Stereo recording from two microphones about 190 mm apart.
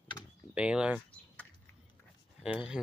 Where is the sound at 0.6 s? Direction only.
5° right (ahead or behind).